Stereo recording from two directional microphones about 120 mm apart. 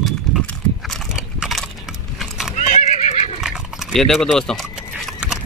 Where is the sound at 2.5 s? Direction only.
70° left (ahead or behind).